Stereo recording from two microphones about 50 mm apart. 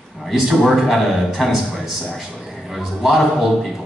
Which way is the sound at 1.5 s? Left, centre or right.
Centre.